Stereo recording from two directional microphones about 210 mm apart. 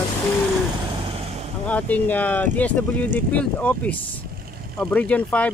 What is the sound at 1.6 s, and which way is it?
Speech, 5° left (ahead or behind).